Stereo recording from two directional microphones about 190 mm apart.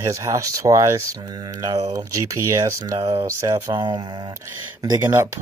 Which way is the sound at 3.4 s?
15° right (ahead or behind).